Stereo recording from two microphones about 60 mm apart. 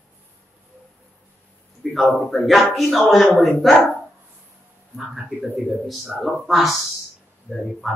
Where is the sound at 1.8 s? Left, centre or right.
Centre.